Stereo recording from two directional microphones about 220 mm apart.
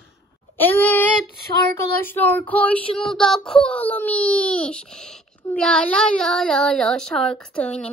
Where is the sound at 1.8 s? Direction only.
10° left (ahead or behind).